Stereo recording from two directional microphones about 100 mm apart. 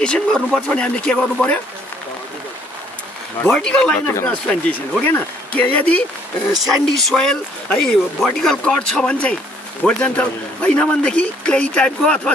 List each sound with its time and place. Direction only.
0.0 s a man's voice: 10° left (ahead or behind)
3.4 s a man's voice: 10° left (ahead or behind)
6.5 s a man's voice: centre (ahead or behind)